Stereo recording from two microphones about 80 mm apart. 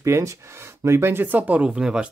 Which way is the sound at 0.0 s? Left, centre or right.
Right.